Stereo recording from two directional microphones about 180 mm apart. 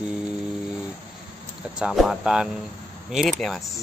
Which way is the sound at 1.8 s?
Centre (ahead or behind).